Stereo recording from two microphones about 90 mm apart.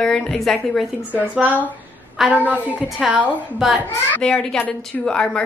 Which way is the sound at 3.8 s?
20° left (ahead or behind).